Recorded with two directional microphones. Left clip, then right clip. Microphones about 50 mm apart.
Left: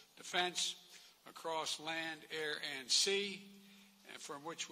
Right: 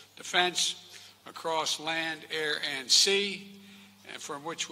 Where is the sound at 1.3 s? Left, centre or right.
Left.